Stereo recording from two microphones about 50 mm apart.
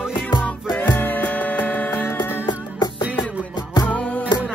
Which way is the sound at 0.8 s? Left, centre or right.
Left.